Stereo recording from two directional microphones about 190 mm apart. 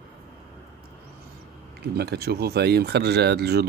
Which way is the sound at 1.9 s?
55° right (ahead or behind).